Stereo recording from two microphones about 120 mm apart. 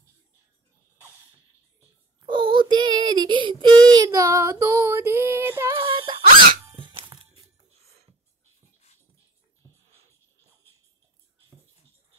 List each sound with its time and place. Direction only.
2.1 s child singing: 40° right (ahead or behind); by 5.8 s 20° right (ahead or behind)
5.8 s dog: 45° right (ahead or behind)
7.3 s music: 60° right (ahead or behind)